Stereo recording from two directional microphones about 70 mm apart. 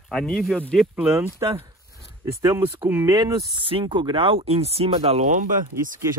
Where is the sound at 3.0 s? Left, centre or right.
Right.